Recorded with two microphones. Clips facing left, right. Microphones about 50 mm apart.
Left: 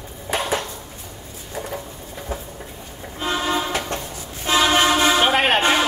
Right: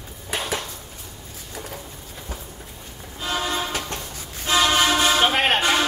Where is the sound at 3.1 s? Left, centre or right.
Left.